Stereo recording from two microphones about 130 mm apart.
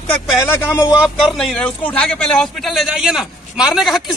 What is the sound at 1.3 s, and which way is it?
A man's voice, 10° left (ahead or behind).